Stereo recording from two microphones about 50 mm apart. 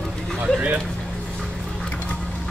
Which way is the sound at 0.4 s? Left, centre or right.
Right.